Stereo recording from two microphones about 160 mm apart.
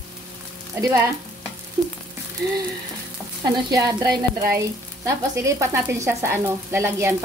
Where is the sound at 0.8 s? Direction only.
20° right (ahead or behind).